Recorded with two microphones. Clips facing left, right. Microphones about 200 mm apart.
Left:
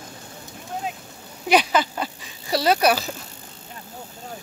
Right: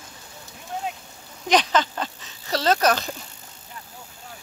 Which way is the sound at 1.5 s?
10° left (ahead or behind).